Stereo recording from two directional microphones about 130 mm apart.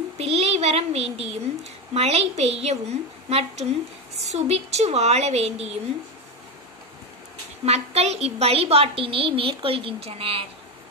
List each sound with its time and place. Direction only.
0.2 s a woman's voice: 50° right (ahead or behind)
7.6 s a woman's voice: 55° right (ahead or behind)